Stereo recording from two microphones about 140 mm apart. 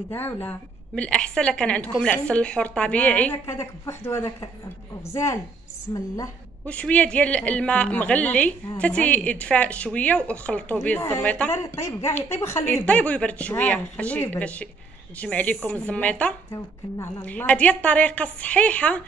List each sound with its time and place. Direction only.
0.1 s a woman's voice: 15° left (ahead or behind)
6.6 s a woman's voice: 10° left (ahead or behind)